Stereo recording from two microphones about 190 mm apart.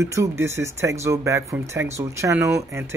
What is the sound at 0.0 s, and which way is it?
Speech, 15° right (ahead or behind).